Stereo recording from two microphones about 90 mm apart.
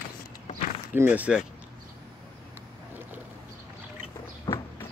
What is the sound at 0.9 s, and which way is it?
Speech, 20° right (ahead or behind).